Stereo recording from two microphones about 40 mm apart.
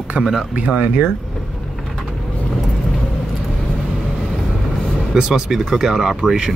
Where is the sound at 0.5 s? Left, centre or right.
Right.